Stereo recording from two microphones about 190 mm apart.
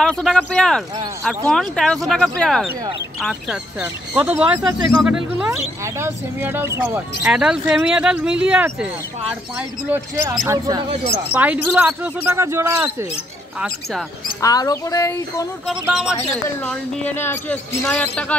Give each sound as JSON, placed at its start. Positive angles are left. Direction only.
{"t": 0.0, "sound": "speech", "side_deg": 5}
{"t": 3.8, "sound": "speech", "side_deg": -10}
{"t": 14.4, "sound": "speech", "side_deg": 20}
{"t": 15.8, "sound": "speech", "side_deg": -5}
{"t": 16.3, "sound": "speech", "side_deg": 10}